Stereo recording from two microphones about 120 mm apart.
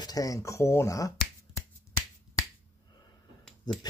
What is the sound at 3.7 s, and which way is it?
Speech, 35° left (ahead or behind).